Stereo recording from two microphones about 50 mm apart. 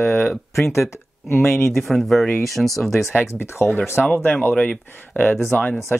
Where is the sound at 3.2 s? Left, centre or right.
Left.